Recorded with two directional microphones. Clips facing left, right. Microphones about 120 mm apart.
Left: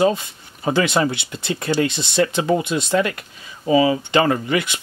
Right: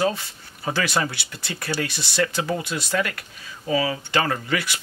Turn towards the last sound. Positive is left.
turn(degrees=20)  # may be behind; listen again after turning